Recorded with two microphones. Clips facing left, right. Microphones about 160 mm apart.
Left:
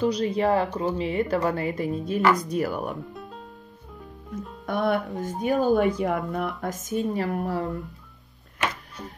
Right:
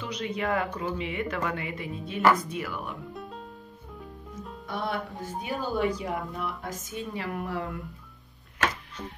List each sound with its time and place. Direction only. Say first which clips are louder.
0.0 s speech: left 9 dB; 35° left (ahead or behind)
3.1 s music: even; centre (ahead or behind)
4.6 s speech: left 8 dB; 55° left (ahead or behind); by 7.8 s 40° left (ahead or behind)